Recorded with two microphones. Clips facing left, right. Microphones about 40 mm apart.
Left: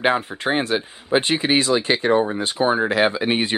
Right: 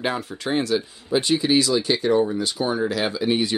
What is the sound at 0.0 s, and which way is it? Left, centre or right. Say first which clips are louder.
Speech: left 6 dB; left.